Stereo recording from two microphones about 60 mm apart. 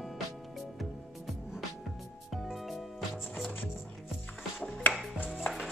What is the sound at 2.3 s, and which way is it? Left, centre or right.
Music, centre.